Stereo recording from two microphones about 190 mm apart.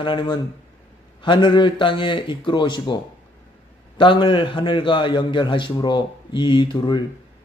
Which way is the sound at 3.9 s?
25° left (ahead or behind).